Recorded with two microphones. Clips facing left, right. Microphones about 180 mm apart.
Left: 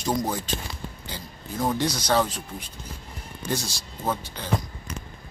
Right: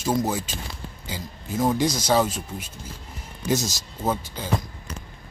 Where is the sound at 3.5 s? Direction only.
40° right (ahead or behind).